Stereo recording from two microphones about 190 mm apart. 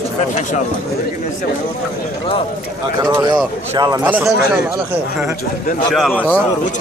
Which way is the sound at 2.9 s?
20° right (ahead or behind).